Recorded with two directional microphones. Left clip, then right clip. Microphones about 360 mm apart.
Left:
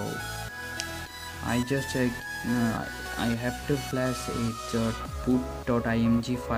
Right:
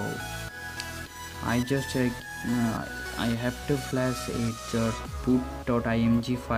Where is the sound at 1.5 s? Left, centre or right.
Centre.